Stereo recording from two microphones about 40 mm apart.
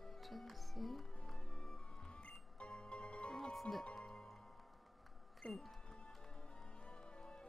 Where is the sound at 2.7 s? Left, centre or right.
Centre.